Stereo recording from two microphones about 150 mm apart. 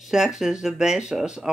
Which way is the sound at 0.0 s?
5° right (ahead or behind).